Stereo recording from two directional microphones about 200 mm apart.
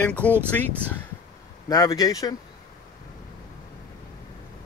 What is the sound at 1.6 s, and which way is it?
Speech, 20° left (ahead or behind).